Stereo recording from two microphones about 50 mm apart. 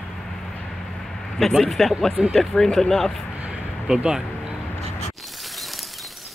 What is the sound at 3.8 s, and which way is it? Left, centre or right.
Speech, centre.